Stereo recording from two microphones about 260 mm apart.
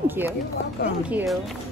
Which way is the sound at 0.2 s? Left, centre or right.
Centre.